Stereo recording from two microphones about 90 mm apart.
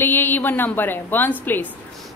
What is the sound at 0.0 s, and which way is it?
Speech, 20° left (ahead or behind).